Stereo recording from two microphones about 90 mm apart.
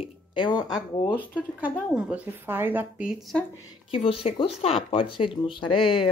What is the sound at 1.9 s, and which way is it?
Speech, 15° right (ahead or behind).